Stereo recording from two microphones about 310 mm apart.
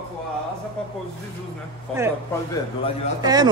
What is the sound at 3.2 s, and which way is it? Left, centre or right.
Speech, centre.